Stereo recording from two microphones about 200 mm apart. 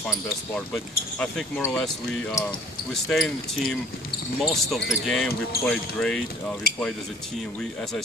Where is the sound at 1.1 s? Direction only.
Centre (ahead or behind).